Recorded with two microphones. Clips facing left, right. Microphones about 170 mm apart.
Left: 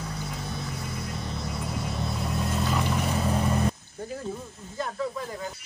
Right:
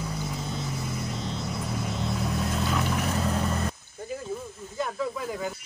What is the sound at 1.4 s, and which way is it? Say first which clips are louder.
Vehicle: right 1 dB; centre (ahead or behind).